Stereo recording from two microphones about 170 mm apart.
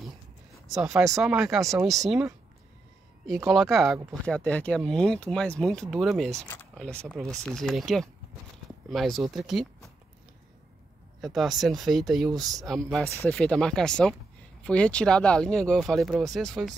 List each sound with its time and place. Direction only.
0.7 s speech: centre (ahead or behind)
1.6 s speech: 20° right (ahead or behind)
1.9 s speech: centre (ahead or behind)
3.4 s speech: centre (ahead or behind)
6.5 s speech: 10° left (ahead or behind)
11.1 s speech: centre (ahead or behind)
12.3 s speech: 20° right (ahead or behind)
12.6 s speech: centre (ahead or behind)